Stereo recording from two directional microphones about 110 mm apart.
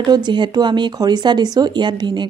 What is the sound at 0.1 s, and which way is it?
Speech, 45° right (ahead or behind).